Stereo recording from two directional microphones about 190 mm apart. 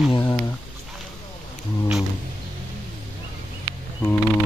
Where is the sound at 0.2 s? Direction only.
15° left (ahead or behind).